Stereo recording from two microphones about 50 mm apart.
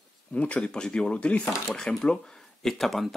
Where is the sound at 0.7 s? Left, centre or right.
Centre.